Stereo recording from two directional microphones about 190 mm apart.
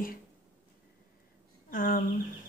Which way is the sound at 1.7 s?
45° left (ahead or behind).